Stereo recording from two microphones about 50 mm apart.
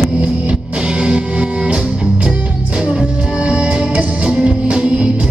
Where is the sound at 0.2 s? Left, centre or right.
Right.